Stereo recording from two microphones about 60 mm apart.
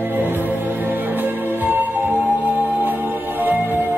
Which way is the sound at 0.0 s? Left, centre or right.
Right.